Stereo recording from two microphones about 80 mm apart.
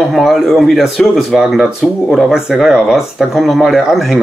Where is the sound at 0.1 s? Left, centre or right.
Centre.